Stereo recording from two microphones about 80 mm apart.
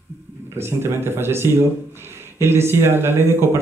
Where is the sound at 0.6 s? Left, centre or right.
Right.